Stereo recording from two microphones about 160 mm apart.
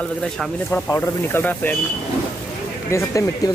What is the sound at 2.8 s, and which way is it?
Speech, 20° left (ahead or behind).